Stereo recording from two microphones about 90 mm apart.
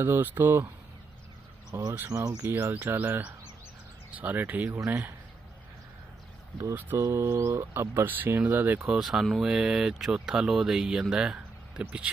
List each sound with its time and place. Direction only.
0.0 s speech: 25° right (ahead or behind)
1.7 s speech: 45° right (ahead or behind)
2.4 s speech: 25° right (ahead or behind)
6.7 s speech: 20° right (ahead or behind)
7.0 s speech: 30° right (ahead or behind)
8.9 s speech: 5° right (ahead or behind)